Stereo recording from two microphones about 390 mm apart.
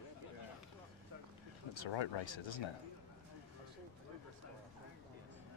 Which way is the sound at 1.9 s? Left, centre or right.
Left.